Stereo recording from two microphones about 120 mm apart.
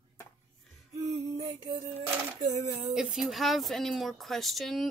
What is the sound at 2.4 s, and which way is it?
Speech, 70° right (ahead or behind).